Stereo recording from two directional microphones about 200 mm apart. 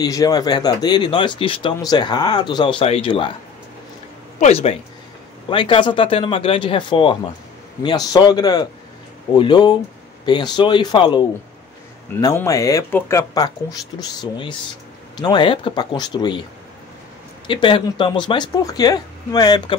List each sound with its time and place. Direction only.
0.0 s speech: 20° left (ahead or behind)
4.4 s speech: 30° left (ahead or behind)
17.5 s speech: 25° left (ahead or behind)